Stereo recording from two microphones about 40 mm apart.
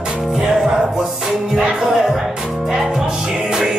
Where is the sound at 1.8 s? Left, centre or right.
Centre.